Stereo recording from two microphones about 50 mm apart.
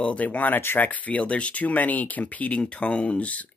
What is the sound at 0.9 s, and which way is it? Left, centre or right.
Speech, left.